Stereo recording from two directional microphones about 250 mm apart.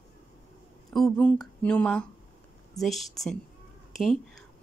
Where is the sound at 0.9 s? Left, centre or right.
Centre.